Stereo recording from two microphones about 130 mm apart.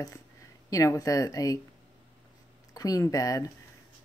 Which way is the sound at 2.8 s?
30° left (ahead or behind).